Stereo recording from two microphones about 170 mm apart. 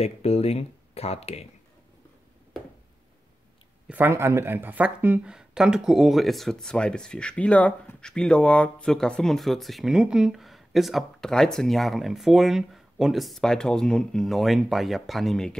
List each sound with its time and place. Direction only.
0.0 s speech: 35° left (ahead or behind)
3.8 s speech: 10° right (ahead or behind)